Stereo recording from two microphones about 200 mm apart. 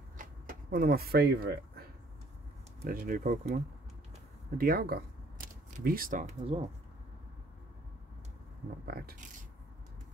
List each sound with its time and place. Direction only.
0.2 s a sound: 45° right (ahead or behind)
2.8 s speech: 45° right (ahead or behind)
8.8 s speech: 50° right (ahead or behind)